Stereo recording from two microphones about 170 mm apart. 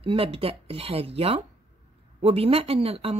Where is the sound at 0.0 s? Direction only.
35° right (ahead or behind).